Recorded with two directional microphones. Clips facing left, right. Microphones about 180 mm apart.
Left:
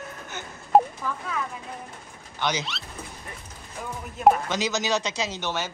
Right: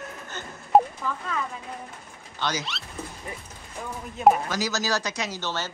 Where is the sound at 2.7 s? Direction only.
Centre (ahead or behind).